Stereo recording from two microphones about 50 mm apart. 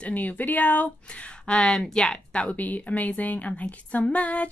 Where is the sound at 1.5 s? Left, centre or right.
Centre.